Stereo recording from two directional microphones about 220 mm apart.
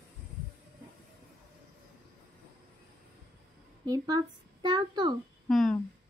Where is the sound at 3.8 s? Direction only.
20° right (ahead or behind).